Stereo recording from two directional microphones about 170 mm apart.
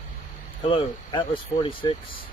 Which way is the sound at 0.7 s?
30° left (ahead or behind).